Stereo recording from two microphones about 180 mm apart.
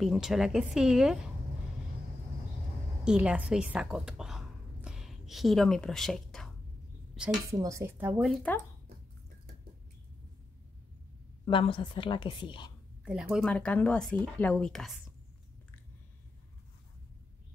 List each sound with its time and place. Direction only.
0.0 s speech: centre (ahead or behind)
3.0 s a woman's voice: 5° right (ahead or behind)
7.5 s speech: 15° right (ahead or behind)
8.2 s speech: centre (ahead or behind)
11.4 s a woman's voice: 30° left (ahead or behind)
13.0 s speech: 5° right (ahead or behind)